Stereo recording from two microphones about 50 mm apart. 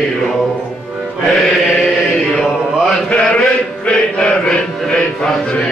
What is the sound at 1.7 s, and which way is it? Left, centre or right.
Chant, centre.